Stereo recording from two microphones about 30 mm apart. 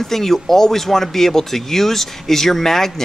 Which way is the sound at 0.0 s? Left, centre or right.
Centre.